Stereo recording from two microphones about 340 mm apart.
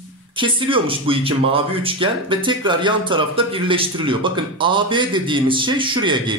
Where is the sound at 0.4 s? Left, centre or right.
Centre.